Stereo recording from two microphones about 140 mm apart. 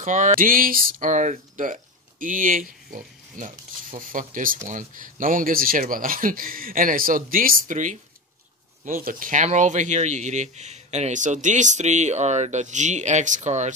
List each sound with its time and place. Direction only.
0.0 s speech: 60° right (ahead or behind)
8.8 s speech: 80° right; by 13.7 s 55° right (ahead or behind)